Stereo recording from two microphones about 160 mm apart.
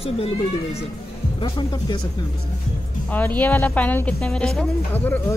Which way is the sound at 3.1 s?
10° left (ahead or behind).